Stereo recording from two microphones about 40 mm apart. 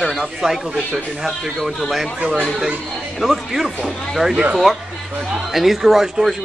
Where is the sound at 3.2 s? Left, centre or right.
Centre.